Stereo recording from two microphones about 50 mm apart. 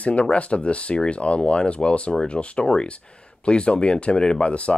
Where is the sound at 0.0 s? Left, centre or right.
Left.